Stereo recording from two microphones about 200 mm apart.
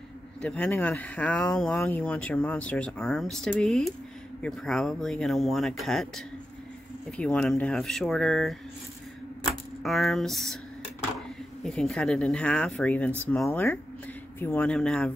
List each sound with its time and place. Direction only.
0.4 s speech: 5° left (ahead or behind)
9.8 s speech: centre (ahead or behind)
11.6 s speech: 5° left (ahead or behind)